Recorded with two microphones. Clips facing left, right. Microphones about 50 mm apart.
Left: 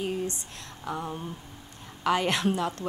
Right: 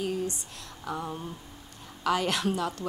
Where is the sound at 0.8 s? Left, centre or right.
Centre.